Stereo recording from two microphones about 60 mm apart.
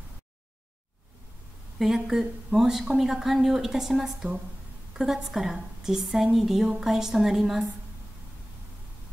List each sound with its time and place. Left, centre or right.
1.8 s a woman's voice: centre